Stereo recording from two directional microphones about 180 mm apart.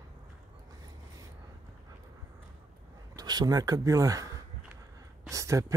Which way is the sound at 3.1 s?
20° right (ahead or behind).